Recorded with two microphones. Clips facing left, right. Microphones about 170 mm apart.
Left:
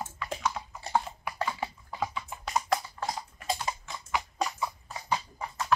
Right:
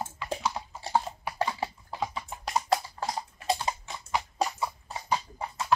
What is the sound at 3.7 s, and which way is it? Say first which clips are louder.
Typing: right 2 dB; 30° right (ahead or behind).